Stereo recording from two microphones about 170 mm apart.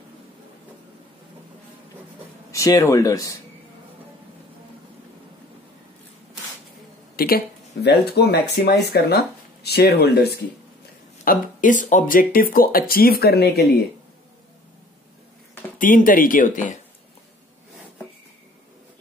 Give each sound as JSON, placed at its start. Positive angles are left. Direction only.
{"t": 2.5, "sound": "speech", "side_deg": 20}
{"t": 7.2, "sound": "speech", "side_deg": 60}
{"t": 11.2, "sound": "speech", "side_deg": 50}
{"t": 15.8, "sound": "speech", "side_deg": 50}